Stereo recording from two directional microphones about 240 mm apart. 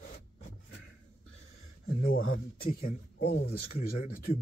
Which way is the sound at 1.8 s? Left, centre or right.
Left.